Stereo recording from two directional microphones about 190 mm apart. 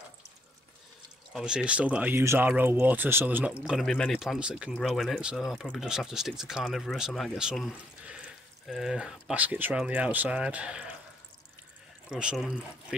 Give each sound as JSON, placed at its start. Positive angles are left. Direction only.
{"t": 1.3, "sound": "speech", "side_deg": -5}
{"t": 12.1, "sound": "speech", "side_deg": -5}